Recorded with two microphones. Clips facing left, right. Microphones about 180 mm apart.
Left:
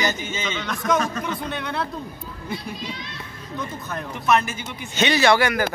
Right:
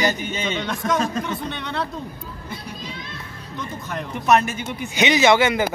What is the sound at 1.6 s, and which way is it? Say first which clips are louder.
Speech: even; 5° left (ahead or behind).